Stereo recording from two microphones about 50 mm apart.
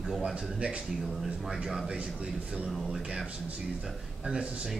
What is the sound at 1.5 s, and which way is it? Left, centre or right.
Speech, centre.